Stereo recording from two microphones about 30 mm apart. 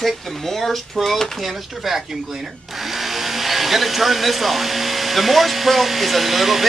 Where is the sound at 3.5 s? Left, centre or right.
Centre.